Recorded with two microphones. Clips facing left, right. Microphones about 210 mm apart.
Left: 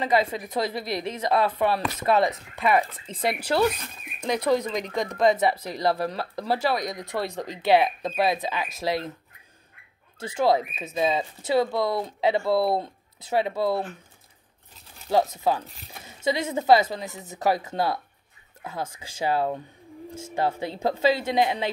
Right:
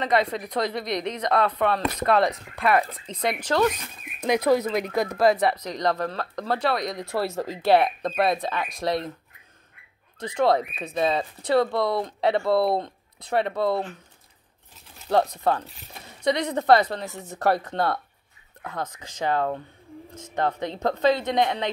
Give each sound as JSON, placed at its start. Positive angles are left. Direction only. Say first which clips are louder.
{"t": 0.0, "sound": "speech", "louder": "even", "side_deg": 5}
{"t": 4.2, "sound": "speech", "louder": "right 3 dB", "side_deg": -10}
{"t": 10.1, "sound": "a woman's voice", "louder": "right 1 dB", "side_deg": 5}
{"t": 15.1, "sound": "a woman's voice", "louder": "right 1 dB", "side_deg": 5}